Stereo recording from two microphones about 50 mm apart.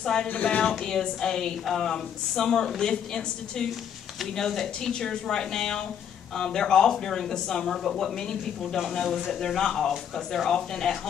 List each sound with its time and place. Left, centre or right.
0.0 s speech: centre
9.0 s speech: centre
9.3 s speech: centre